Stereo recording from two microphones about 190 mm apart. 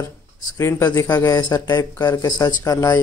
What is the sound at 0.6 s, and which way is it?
A man's voice, 15° left (ahead or behind).